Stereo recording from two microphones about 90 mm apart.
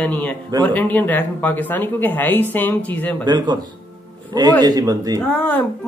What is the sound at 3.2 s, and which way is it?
Speech, 55° right (ahead or behind).